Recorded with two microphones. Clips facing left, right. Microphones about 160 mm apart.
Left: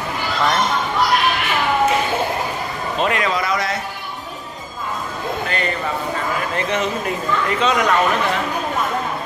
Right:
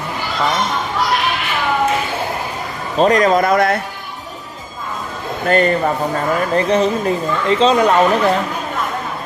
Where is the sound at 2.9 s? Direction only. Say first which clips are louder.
Right 8 dB; 40° right (ahead or behind); by 3.8 s 55° right (ahead or behind).